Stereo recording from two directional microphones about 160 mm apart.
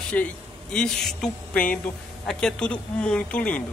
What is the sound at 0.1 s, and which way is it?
A woman's voice, 10° left (ahead or behind).